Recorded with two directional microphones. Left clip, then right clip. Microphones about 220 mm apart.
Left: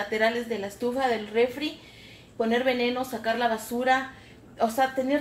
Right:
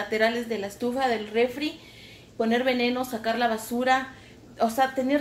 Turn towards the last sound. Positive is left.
turn(degrees=0)  # may be behind; listen again after turning